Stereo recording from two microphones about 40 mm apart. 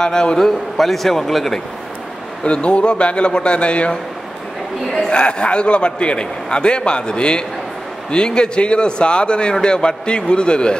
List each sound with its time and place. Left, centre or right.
0.0 s a man's voice: centre
0.4 s speech: centre
2.4 s a man's voice: left